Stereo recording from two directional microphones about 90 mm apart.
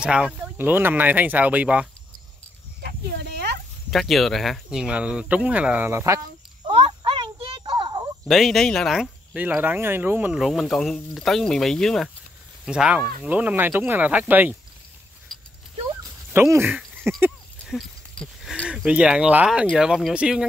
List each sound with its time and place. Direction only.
0.0 s speech: 10° right (ahead or behind)
3.9 s speech: centre (ahead or behind)
4.6 s speech: 10° right (ahead or behind)
5.9 s speech: 30° right (ahead or behind)
6.6 s a sound: 65° right (ahead or behind)
8.3 s speech: centre (ahead or behind)
9.3 s speech: 15° right (ahead or behind)
10.3 s speech: centre (ahead or behind)
12.6 s speech: 10° right (ahead or behind)
15.3 s dog: 5° left (ahead or behind)
16.3 s speech: 25° right (ahead or behind)
18.7 s speech: 10° right (ahead or behind)